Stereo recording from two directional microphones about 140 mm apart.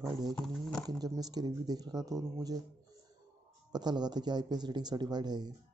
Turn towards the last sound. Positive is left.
turn(degrees=-30)  # may be behind; listen again after turning